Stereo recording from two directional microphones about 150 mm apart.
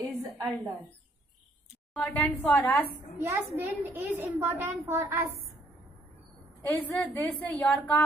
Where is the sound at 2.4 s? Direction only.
15° left (ahead or behind).